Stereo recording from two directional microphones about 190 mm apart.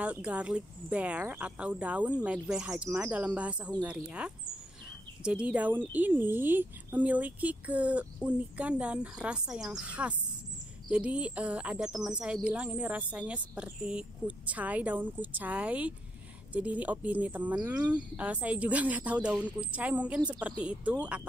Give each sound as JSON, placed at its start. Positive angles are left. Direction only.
{"t": 0.0, "sound": "speech", "side_deg": -5}